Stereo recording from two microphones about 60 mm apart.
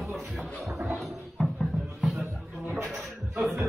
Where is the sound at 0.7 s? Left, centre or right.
Right.